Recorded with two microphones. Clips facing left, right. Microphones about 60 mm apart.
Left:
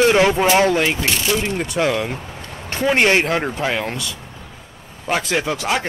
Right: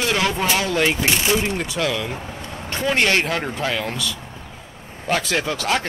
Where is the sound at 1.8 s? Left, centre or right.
Left.